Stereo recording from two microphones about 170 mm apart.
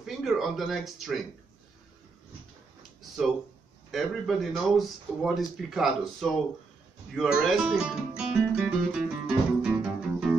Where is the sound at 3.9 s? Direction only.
Centre (ahead or behind).